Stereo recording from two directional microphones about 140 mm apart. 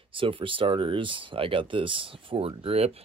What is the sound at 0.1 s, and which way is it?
Speech, 40° right (ahead or behind).